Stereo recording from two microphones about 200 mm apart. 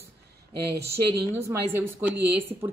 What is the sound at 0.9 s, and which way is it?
Speech, 15° right (ahead or behind).